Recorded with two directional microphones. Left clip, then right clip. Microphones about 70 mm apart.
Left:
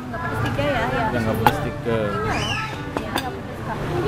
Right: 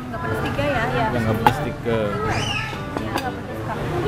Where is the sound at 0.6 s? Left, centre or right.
Centre.